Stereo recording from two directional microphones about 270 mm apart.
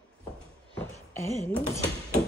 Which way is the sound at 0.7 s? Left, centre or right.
Centre.